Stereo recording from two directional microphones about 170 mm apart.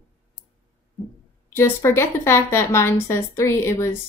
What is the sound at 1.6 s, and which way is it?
A woman's voice, 15° left (ahead or behind).